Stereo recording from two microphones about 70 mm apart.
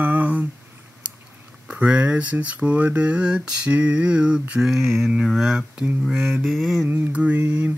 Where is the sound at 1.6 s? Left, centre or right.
Centre.